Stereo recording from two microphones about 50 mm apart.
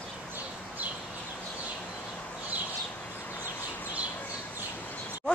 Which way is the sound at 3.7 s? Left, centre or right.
Left.